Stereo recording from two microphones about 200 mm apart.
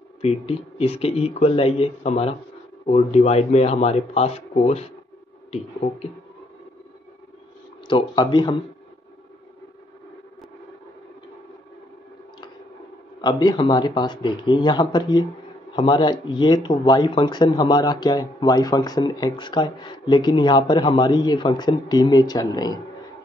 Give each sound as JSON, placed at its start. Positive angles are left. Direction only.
{"t": 0.2, "sound": "speech", "side_deg": 30}
{"t": 7.9, "sound": "speech", "side_deg": 20}
{"t": 13.2, "sound": "speech", "side_deg": 20}